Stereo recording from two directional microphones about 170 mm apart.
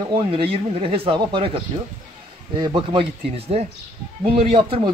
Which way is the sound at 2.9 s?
35° right (ahead or behind).